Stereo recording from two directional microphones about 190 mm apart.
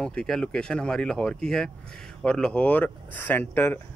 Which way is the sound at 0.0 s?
5° left (ahead or behind).